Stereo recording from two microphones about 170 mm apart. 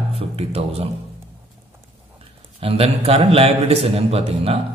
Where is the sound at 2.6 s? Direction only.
35° right (ahead or behind).